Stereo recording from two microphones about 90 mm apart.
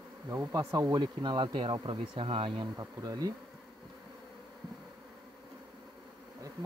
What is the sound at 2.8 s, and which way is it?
Bee, 45° right (ahead or behind).